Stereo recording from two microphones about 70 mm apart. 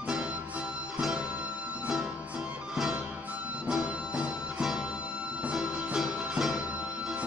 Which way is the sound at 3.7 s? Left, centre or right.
Centre.